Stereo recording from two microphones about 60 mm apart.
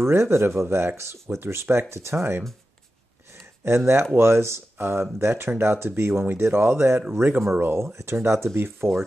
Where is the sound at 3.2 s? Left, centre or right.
Right.